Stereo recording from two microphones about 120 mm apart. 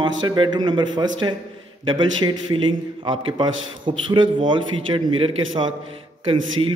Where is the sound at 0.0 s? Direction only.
40° right (ahead or behind).